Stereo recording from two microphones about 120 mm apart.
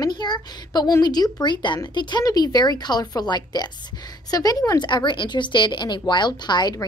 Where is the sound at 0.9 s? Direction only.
35° left (ahead or behind).